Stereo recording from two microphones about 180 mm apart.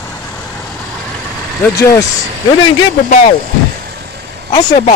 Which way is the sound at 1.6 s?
20° left (ahead or behind).